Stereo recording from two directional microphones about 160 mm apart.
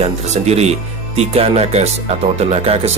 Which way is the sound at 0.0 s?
40° right (ahead or behind).